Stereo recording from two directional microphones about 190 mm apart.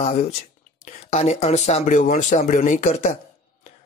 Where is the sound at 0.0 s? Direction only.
35° left (ahead or behind).